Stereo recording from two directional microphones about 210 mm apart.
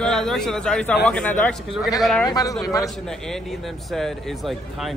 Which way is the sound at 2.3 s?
15° left (ahead or behind).